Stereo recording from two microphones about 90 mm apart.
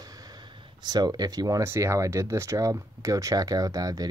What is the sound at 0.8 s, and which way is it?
Speech, 50° right (ahead or behind).